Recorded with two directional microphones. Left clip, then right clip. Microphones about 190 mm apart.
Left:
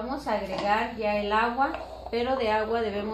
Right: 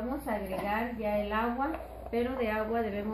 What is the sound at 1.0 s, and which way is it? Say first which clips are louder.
A woman's voice: left 6 dB; 30° left (ahead or behind).